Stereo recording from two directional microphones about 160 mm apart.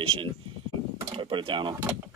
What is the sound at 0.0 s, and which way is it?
Speech, 35° right (ahead or behind).